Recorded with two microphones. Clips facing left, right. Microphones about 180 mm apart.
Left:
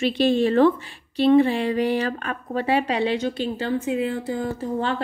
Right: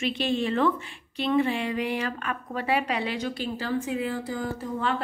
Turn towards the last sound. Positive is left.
turn(degrees=30)  # may be behind; listen again after turning